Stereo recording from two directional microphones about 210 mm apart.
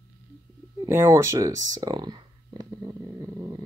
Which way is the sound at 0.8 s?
15° right (ahead or behind).